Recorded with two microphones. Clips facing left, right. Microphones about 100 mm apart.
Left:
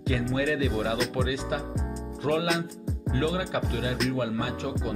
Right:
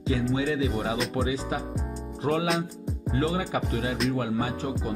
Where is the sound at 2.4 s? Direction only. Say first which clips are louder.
Right 1 dB; centre (ahead or behind).